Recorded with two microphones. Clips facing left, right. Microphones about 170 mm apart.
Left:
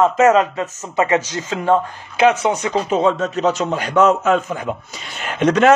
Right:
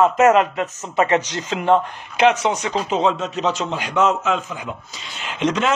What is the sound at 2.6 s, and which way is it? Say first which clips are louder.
A man's voice: left 3 dB; 50° left (ahead or behind).